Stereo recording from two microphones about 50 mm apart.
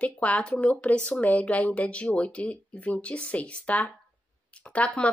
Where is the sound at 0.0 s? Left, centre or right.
Left.